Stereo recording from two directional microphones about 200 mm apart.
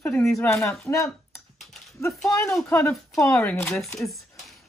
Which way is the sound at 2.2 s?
15° left (ahead or behind).